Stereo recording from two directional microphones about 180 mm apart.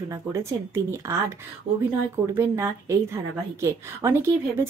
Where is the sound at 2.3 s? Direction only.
15° right (ahead or behind).